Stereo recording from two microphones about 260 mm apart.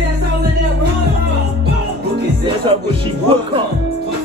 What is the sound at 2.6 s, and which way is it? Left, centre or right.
Speech, centre.